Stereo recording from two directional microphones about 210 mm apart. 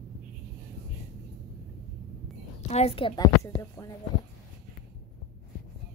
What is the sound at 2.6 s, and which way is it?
A woman's voice, 30° left (ahead or behind).